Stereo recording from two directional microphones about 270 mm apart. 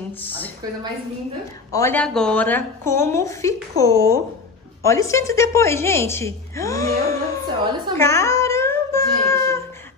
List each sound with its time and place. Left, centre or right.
1.7 s a woman's voice: centre
7.4 s a woman's voice: centre
8.0 s a sound: centre